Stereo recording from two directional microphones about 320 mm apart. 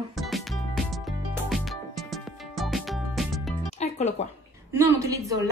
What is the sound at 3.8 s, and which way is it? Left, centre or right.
Music, left.